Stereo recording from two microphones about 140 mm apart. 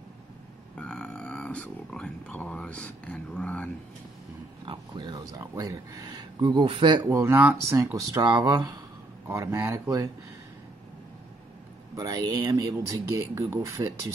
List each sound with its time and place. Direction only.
0.7 s speech: 5° left (ahead or behind)
4.6 s speech: 30° right (ahead or behind)
7.1 s speech: 20° right (ahead or behind)
7.8 s speech: 25° right (ahead or behind)
11.9 s speech: 25° right (ahead or behind)